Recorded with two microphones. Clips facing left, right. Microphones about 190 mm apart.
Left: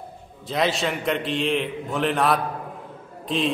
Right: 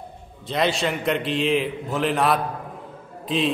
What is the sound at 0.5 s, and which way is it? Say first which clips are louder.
A man's voice: right 1 dB; centre (ahead or behind).